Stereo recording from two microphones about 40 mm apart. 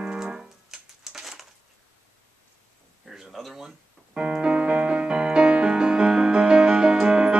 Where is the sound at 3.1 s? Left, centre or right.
Centre.